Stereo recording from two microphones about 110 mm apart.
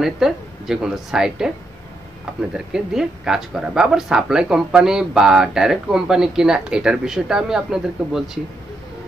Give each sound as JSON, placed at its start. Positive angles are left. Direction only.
{"t": 0.0, "sound": "speech", "side_deg": -5}
{"t": 2.5, "sound": "speech", "side_deg": -5}